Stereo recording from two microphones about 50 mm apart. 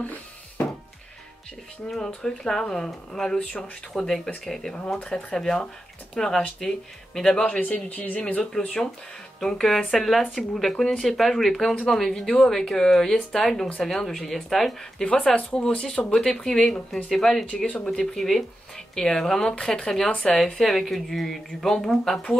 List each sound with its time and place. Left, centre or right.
1.9 s speech: centre
3.3 s a man's voice: left
3.9 s speech: centre
4.7 s speech: left
7.4 s a man's voice: left
8.4 s speech: centre
15.0 s speech: centre
18.1 s speech: centre